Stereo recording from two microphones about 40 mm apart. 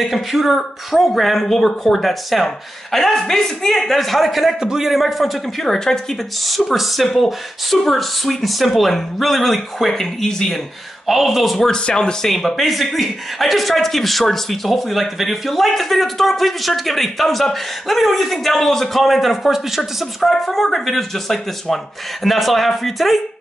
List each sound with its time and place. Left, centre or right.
0.0 s speech: centre
5.6 s speech: centre
6.4 s speech: centre
11.1 s speech: centre
11.7 s speech: centre
12.3 s speech: centre